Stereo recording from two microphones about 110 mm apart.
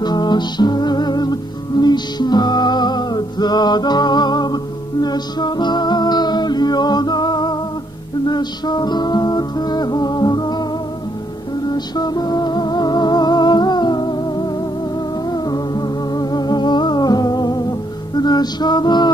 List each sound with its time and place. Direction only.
0.0 s music: 40° left (ahead or behind)
11.7 s music: 40° left (ahead or behind)